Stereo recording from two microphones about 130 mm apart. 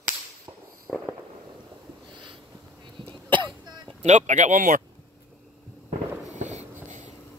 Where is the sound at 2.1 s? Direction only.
40° right (ahead or behind).